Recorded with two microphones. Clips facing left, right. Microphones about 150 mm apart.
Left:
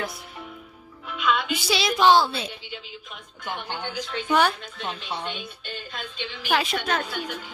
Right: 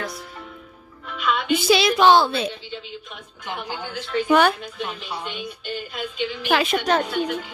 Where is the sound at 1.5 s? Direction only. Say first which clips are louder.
Right 7 dB; 55° right (ahead or behind).